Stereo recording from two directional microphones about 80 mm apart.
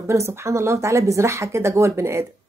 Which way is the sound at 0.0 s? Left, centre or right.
Right.